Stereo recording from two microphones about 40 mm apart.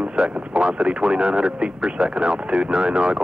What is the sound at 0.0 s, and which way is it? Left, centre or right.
Speech, right.